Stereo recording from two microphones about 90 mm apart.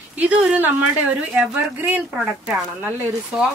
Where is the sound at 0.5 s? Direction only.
15° right (ahead or behind).